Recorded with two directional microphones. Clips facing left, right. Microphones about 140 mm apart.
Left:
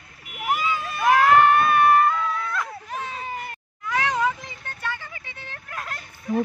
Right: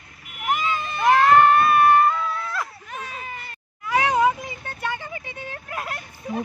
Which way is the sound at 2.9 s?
30° left (ahead or behind).